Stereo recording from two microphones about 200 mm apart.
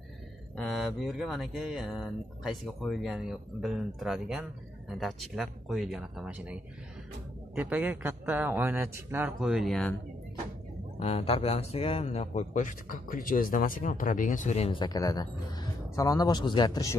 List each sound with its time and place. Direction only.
0.6 s a man's voice: centre (ahead or behind)
11.0 s speech: 30° left (ahead or behind)